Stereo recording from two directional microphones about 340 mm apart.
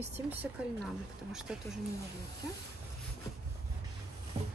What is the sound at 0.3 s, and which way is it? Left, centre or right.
Speech, centre.